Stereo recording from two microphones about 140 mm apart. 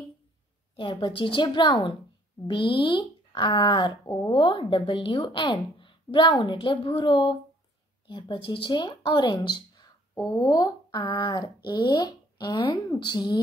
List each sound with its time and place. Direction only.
0.7 s speech: 35° left (ahead or behind)